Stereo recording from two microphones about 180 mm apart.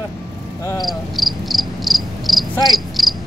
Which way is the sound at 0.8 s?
Centre (ahead or behind).